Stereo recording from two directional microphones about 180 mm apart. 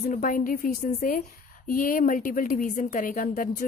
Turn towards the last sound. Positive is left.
turn(degrees=50)  # may be behind; listen again after turning